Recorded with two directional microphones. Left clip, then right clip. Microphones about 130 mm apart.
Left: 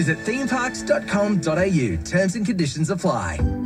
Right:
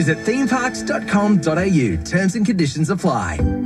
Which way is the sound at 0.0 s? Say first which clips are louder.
Right 4 dB; 40° right (ahead or behind).